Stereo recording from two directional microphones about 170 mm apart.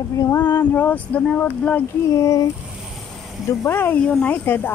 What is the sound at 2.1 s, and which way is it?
Speech, 20° left (ahead or behind).